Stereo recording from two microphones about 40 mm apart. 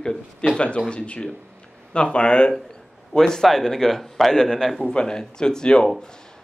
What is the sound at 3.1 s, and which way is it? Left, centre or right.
Speech, centre.